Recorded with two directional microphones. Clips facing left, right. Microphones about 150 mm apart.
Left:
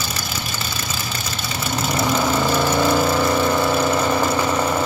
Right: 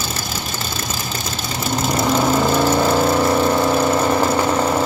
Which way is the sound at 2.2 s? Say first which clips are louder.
Right 4 dB; 20° right (ahead or behind).